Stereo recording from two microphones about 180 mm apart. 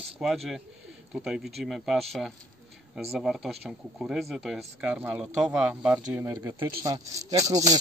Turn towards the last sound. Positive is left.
turn(degrees=-20)  # may be behind; listen again after turning